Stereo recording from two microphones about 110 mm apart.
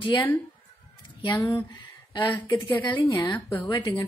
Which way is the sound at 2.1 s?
40° left (ahead or behind).